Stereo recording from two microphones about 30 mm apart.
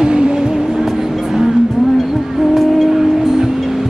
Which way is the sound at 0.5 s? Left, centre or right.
Centre.